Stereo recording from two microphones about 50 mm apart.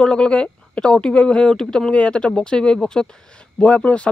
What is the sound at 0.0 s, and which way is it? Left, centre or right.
Speech, centre.